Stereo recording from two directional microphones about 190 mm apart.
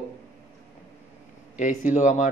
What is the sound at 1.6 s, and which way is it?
Speech, 40° left (ahead or behind).